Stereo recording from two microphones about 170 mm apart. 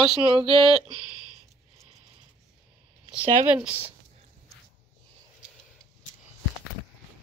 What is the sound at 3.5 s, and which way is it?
Speech, 10° right (ahead or behind).